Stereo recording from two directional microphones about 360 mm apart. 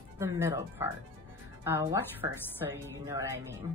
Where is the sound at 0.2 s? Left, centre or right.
Centre.